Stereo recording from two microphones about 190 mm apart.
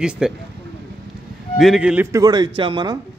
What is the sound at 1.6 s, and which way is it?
Speech, 5° right (ahead or behind).